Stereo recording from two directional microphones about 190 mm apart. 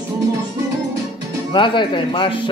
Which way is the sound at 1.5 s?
25° left (ahead or behind).